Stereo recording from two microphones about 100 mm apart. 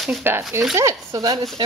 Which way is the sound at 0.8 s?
35° right (ahead or behind).